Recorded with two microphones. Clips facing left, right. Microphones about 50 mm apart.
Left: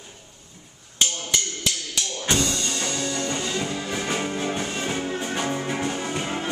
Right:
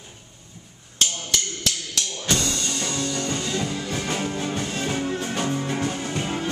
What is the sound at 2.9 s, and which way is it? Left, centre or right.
Music, centre.